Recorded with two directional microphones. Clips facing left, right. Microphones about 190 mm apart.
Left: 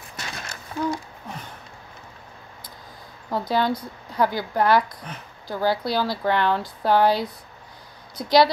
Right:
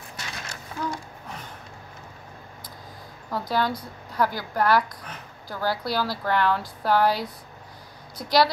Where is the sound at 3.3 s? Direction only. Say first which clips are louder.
Left 3 dB; 25° left (ahead or behind).